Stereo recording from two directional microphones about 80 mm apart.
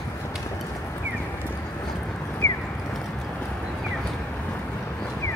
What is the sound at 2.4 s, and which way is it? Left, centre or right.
Clip-clop, left.